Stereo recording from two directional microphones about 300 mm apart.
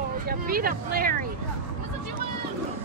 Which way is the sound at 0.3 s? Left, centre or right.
Right.